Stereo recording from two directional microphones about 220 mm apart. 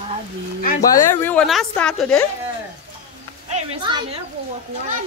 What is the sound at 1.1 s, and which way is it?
A woman's voice, 10° left (ahead or behind).